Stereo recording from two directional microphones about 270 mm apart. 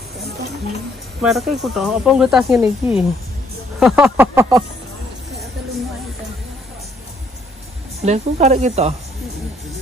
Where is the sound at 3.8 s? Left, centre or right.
Centre.